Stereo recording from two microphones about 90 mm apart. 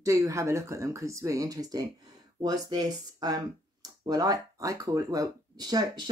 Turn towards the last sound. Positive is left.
turn(degrees=-45)  # may be behind; listen again after turning